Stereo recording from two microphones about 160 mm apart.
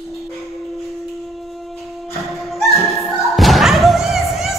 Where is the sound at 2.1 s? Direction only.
Centre (ahead or behind).